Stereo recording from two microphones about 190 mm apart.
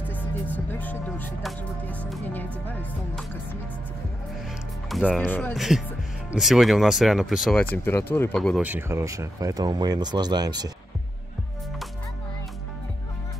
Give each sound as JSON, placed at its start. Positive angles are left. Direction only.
{"t": 0.1, "sound": "music", "side_deg": 10}
{"t": 4.8, "sound": "speech", "side_deg": 0}
{"t": 7.7, "sound": "music", "side_deg": 10}
{"t": 8.6, "sound": "speech", "side_deg": -10}